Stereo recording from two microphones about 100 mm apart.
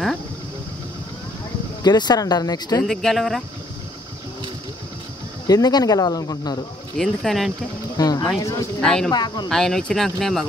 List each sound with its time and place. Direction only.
1.8 s speech: 45° left (ahead or behind)
2.8 s speech: centre (ahead or behind)
5.5 s speech: 40° left (ahead or behind)
7.0 s speech: centre (ahead or behind)
8.0 s a sound: 45° left (ahead or behind)
8.4 s speech: 30° left (ahead or behind)
8.8 s speech: 5° left (ahead or behind)
9.1 s speech: 45° left (ahead or behind)
9.5 s speech: 5° left (ahead or behind)